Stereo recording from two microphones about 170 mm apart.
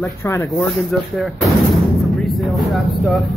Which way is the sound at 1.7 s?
Centre (ahead or behind).